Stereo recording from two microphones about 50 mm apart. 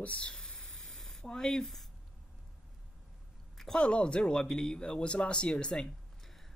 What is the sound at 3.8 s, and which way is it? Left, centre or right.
Speech, left.